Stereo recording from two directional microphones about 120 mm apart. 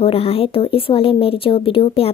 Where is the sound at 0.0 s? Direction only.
55° left (ahead or behind).